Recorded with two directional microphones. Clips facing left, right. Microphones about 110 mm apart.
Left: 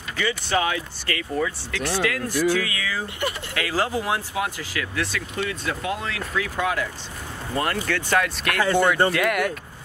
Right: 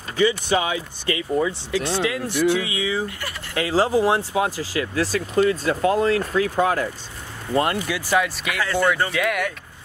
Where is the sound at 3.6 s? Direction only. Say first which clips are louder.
Right 7 dB; 30° right (ahead or behind).